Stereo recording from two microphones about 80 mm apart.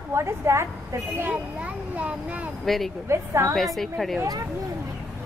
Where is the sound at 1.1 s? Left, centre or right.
Right.